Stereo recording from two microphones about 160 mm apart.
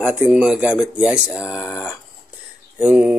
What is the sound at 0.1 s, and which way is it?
Speech, 5° right (ahead or behind).